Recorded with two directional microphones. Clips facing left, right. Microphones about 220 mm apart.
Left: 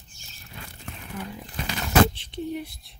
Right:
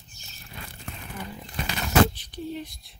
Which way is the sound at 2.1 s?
25° left (ahead or behind).